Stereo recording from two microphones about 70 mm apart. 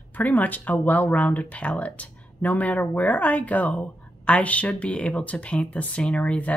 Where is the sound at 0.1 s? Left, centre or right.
Left.